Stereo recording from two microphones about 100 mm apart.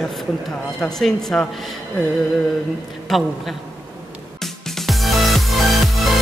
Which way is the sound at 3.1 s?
Centre (ahead or behind).